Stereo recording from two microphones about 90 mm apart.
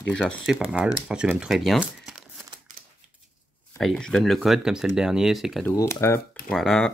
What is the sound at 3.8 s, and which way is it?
Speech, 5° left (ahead or behind).